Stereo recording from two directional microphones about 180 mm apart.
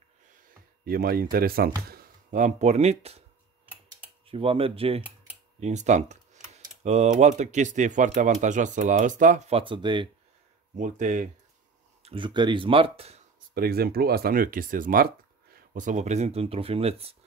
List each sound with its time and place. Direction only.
0.8 s speech: 55° right (ahead or behind); by 3.3 s 35° right (ahead or behind)
4.3 s speech: 30° right (ahead or behind)
10.8 s speech: 45° right (ahead or behind)
12.0 s speech: 30° right (ahead or behind)
13.6 s speech: 55° right (ahead or behind); by 17.2 s 35° right (ahead or behind)